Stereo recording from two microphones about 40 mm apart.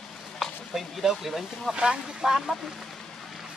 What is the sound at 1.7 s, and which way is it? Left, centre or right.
Speech, right.